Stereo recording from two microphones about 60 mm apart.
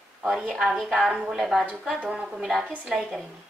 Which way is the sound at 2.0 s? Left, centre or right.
Centre.